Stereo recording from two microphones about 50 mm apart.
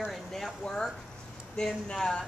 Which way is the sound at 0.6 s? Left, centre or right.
Centre.